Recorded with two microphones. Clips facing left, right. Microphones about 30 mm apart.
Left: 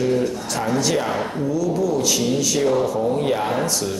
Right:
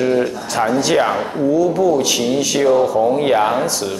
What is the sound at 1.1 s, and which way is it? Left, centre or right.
Speech, centre.